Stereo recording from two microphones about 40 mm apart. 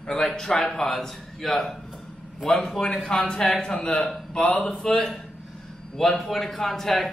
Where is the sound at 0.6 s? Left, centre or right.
Centre.